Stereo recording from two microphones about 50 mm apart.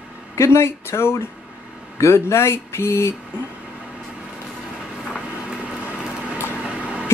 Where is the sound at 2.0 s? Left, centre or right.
Left.